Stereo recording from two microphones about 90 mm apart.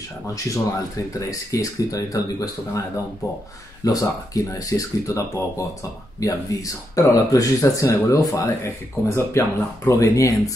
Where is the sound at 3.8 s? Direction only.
40° left (ahead or behind).